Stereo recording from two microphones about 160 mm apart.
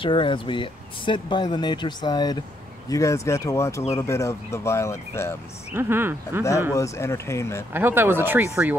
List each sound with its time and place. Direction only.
0.0 s speech: 30° left (ahead or behind); by 5.4 s 15° left (ahead or behind)
5.7 s speech: 15° right (ahead or behind)
6.7 s speech: 20° left (ahead or behind)
7.7 s speech: 15° right (ahead or behind)